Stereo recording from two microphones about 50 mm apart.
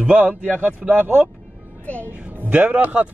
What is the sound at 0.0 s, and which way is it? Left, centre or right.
A man's voice, right.